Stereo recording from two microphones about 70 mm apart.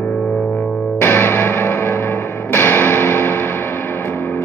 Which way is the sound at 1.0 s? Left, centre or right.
Left.